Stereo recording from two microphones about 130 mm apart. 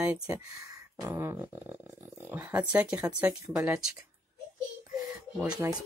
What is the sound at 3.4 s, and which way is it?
Speech, 25° right (ahead or behind).